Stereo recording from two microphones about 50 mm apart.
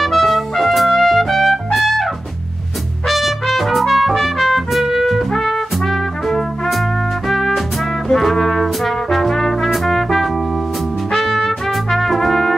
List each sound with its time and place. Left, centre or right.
0.0 s trumpet: centre
3.1 s trumpet: centre
8.1 s trombone: centre
11.1 s trumpet: centre